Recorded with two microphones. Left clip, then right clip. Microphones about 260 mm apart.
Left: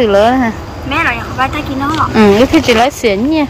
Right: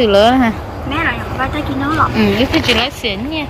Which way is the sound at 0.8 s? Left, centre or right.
Centre.